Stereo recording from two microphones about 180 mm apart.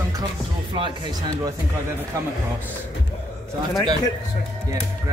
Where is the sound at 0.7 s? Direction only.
25° right (ahead or behind).